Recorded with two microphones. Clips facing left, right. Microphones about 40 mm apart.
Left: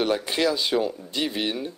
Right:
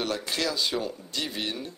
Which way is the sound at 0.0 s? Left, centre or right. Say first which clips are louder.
Left 6 dB; centre.